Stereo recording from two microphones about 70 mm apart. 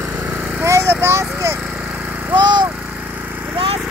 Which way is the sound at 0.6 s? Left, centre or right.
Right.